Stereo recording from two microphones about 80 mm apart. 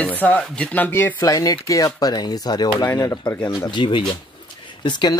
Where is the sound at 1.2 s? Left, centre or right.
Left.